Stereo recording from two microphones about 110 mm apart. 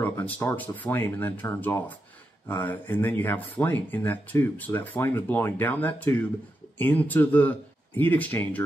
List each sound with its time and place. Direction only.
0.4 s speech: 15° left (ahead or behind)